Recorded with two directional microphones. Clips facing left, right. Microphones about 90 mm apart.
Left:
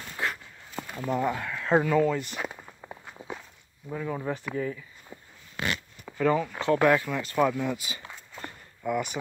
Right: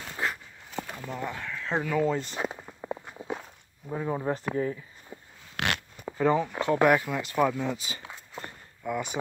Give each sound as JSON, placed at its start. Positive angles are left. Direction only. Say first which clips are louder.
{"t": 0.2, "sound": "a sound", "louder": "even", "side_deg": -25}
{"t": 0.7, "sound": "a sound", "louder": "left 3 dB", "side_deg": 5}
{"t": 1.2, "sound": "speech", "louder": "left 5 dB", "side_deg": 5}
{"t": 2.0, "sound": "speech", "louder": "even", "side_deg": -30}
{"t": 3.1, "sound": "walk", "louder": "right 4 dB", "side_deg": -5}
{"t": 3.9, "sound": "speech", "louder": "right 2 dB", "side_deg": -25}
{"t": 5.6, "sound": "a sound", "louder": "right 1 dB", "side_deg": -70}
{"t": 6.0, "sound": "speech", "louder": "even", "side_deg": -20}
{"t": 7.3, "sound": "speech", "louder": "left 1 dB", "side_deg": -5}
{"t": 7.6, "sound": "speech", "louder": "left 1 dB", "side_deg": -25}
{"t": 8.0, "sound": "a sound", "louder": "right 1 dB", "side_deg": -5}
{"t": 8.8, "sound": "speech", "louder": "left 3 dB", "side_deg": 10}